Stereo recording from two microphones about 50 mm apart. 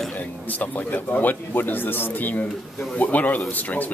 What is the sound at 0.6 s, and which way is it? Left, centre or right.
Speech, left.